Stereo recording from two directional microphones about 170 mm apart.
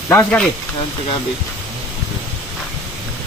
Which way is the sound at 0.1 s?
15° left (ahead or behind).